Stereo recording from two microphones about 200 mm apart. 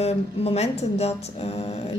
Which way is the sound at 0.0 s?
30° left (ahead or behind).